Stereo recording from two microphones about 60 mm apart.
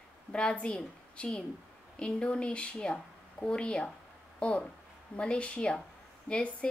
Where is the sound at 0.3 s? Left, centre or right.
Centre.